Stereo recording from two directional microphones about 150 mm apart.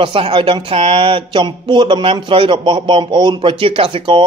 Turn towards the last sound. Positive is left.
turn(degrees=-35)  # may be behind; listen again after turning